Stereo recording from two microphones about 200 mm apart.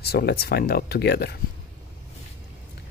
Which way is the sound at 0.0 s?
55° left (ahead or behind).